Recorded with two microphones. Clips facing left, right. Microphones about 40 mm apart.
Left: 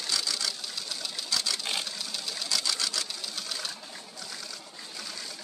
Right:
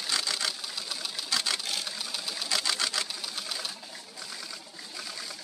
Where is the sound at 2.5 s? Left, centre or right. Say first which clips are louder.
Right 2 dB; right.